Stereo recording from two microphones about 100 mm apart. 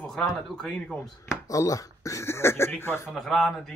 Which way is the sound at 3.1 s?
5° left (ahead or behind).